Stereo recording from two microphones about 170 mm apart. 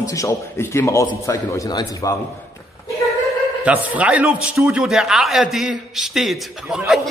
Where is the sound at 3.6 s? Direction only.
10° right (ahead or behind).